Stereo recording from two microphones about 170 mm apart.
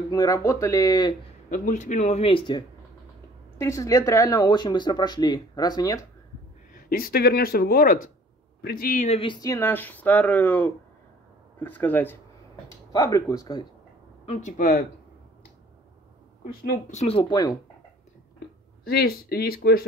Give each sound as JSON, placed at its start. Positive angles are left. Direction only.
{"t": 0.1, "sound": "speech", "side_deg": 20}
{"t": 1.5, "sound": "a man's voice", "side_deg": 45}
{"t": 3.5, "sound": "speech", "side_deg": 15}
{"t": 6.7, "sound": "speech", "side_deg": 60}
{"t": 9.4, "sound": "speech", "side_deg": 15}
{"t": 14.2, "sound": "speech", "side_deg": 45}
{"t": 16.7, "sound": "a man's voice", "side_deg": 45}
{"t": 17.2, "sound": "speech", "side_deg": 20}
{"t": 18.9, "sound": "speech", "side_deg": 65}